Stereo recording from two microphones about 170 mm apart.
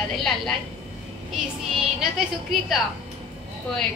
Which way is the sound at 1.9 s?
Centre (ahead or behind).